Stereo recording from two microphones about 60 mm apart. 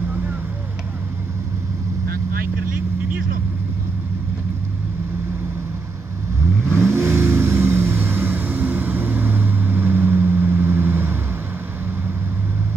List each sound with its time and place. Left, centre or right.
6.7 s vehicle: right